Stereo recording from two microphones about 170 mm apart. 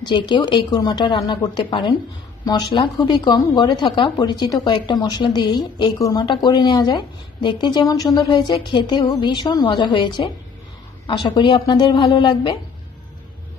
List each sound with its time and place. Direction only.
0.0 s speech: 25° left (ahead or behind)